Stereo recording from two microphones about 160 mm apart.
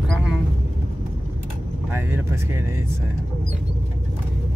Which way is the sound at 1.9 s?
15° right (ahead or behind).